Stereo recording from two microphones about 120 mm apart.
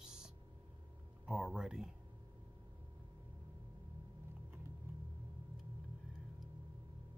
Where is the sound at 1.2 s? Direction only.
10° right (ahead or behind).